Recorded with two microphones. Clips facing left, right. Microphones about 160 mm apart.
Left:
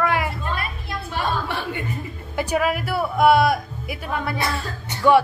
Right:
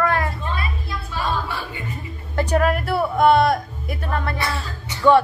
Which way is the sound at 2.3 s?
5° left (ahead or behind).